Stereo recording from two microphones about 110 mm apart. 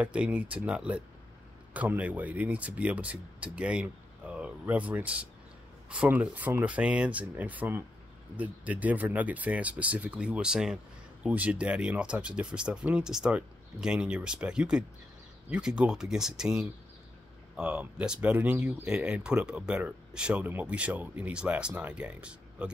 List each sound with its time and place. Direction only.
0.0 s speech: 10° right (ahead or behind)